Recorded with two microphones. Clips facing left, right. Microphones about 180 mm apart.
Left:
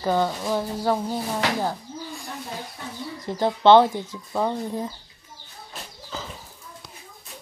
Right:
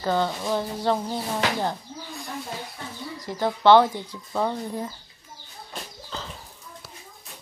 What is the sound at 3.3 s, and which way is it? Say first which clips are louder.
Speech: left 1 dB; 20° left (ahead or behind).